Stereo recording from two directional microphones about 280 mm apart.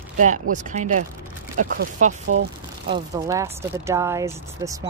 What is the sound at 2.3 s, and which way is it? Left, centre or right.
Speech, right.